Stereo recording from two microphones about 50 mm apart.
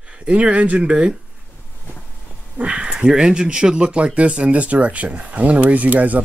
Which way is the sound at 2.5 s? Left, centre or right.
Right.